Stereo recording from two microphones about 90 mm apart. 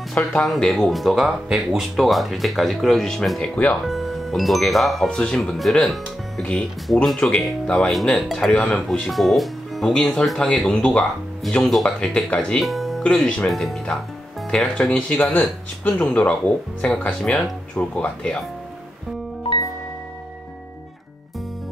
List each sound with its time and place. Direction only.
0.1 s speech: 10° left (ahead or behind)
11.4 s speech: centre (ahead or behind)
12.5 s music: centre (ahead or behind)
13.0 s speech: 10° left (ahead or behind)